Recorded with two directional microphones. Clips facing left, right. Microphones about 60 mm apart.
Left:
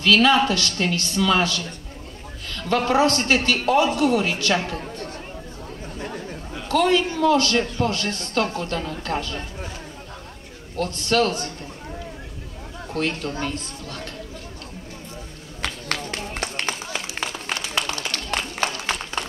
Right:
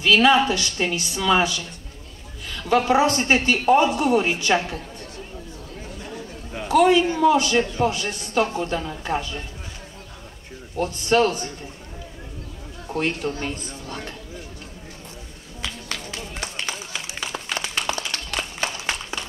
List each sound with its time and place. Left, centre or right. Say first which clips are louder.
0.0 s a woman's voice: even; centre
6.7 s a woman's voice: right 3 dB; centre
10.8 s a woman's voice: right 2 dB; centre
12.9 s a woman's voice: right 1 dB; centre
15.6 s run: left 4 dB; left
18.0 s a sound: left 2 dB; left
19.1 s a sound: left 3 dB; centre